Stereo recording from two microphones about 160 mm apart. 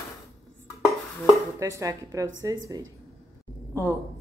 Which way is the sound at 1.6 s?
20° right (ahead or behind).